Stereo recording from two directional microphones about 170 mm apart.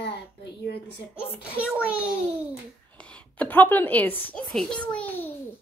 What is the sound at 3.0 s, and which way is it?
Speech, 5° left (ahead or behind).